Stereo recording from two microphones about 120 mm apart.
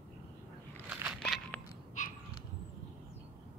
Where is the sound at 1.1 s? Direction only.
5° left (ahead or behind).